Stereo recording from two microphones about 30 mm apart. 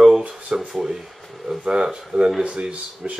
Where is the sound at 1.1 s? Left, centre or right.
Centre.